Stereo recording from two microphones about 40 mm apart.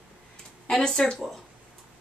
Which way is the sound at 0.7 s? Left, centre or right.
Centre.